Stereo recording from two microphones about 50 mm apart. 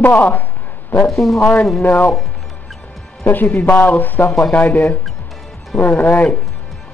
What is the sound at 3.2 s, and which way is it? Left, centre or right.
Speech, left.